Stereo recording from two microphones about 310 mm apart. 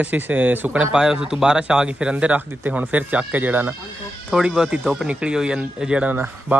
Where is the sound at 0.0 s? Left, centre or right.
Centre.